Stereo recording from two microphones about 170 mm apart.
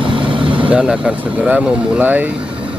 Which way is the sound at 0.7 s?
5° right (ahead or behind).